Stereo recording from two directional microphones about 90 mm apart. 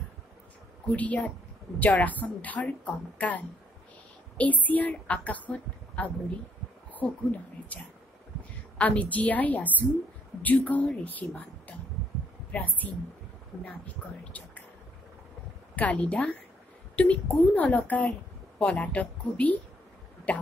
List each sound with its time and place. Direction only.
0.9 s a woman's voice: 15° left (ahead or behind)
8.7 s a woman's voice: 15° left (ahead or behind)
15.7 s a woman's voice: 15° left (ahead or behind)